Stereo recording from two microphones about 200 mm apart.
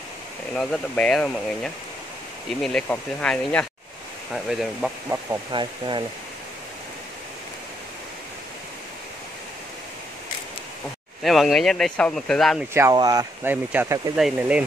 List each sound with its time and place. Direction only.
0.6 s speech: 5° left (ahead or behind)
5.5 s speech: 25° right (ahead or behind)
11.2 s speech: centre (ahead or behind)
12.7 s speech: 15° right (ahead or behind)